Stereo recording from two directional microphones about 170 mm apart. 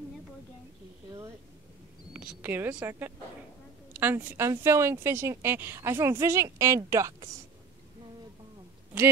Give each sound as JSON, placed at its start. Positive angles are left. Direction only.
{"t": 2.1, "sound": "a woman's voice", "side_deg": -10}